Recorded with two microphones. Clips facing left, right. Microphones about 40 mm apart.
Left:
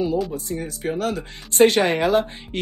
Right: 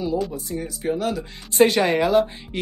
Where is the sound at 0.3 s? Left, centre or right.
Left.